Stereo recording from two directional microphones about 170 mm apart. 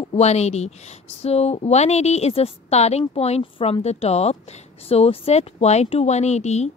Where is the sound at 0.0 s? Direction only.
40° left (ahead or behind).